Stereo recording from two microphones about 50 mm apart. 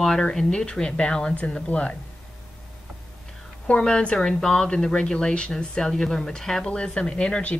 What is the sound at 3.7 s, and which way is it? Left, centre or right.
Speech, centre.